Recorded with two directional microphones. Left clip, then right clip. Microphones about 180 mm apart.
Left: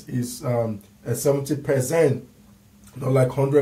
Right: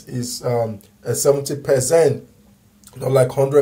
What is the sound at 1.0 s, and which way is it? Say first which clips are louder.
Speech: right 5 dB; 15° right (ahead or behind).